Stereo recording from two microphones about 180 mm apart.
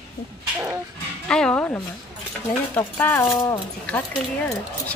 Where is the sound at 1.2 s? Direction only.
5° left (ahead or behind).